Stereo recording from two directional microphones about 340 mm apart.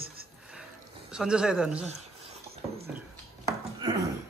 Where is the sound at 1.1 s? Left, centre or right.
Centre.